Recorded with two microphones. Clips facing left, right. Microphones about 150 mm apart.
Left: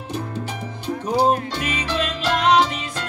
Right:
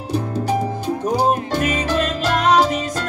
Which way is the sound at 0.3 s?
40° right (ahead or behind).